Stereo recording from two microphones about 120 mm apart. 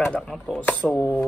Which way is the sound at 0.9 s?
25° left (ahead or behind).